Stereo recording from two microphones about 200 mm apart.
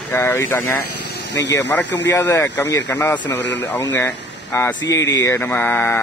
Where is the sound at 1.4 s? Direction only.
60° left (ahead or behind).